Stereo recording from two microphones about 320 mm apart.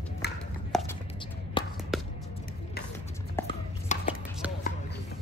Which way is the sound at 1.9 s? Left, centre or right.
Centre.